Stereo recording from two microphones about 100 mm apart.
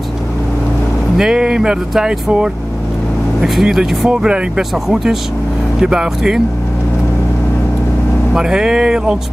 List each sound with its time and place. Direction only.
1.1 s speech: 5° right (ahead or behind)
8.3 s speech: 5° right (ahead or behind)